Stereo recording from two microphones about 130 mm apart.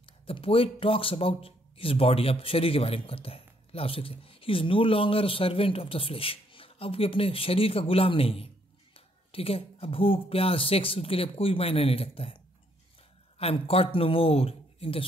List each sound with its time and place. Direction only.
0.0 s speech: 45° left (ahead or behind)
13.4 s speech: 50° left (ahead or behind)